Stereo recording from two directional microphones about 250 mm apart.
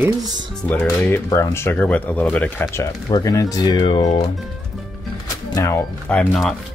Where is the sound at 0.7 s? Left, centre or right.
Centre.